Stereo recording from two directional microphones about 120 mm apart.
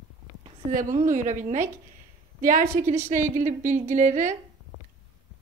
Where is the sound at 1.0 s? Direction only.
90° right.